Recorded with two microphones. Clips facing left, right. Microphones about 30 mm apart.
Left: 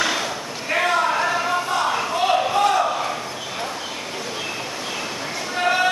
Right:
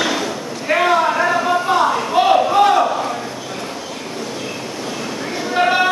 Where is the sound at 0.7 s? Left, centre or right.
Centre.